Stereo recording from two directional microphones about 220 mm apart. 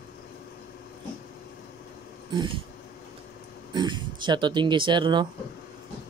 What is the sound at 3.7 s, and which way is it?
Speech, 20° right (ahead or behind).